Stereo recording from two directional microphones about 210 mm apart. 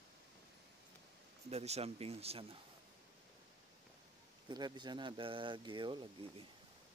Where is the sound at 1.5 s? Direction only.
30° right (ahead or behind).